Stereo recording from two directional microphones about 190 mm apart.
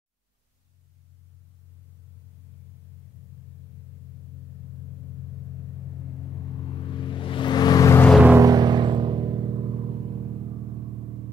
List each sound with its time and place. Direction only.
6.7 s vehicle: 25° left (ahead or behind)
8.1 s a sound: 5° right (ahead or behind)
8.5 s vehicle: 20° right (ahead or behind)